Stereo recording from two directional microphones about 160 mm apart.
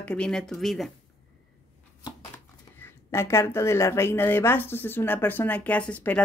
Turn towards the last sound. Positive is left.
turn(degrees=10)  # may be behind; listen again after turning